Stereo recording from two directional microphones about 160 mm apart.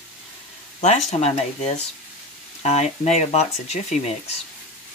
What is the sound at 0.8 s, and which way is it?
Speech, 45° left (ahead or behind).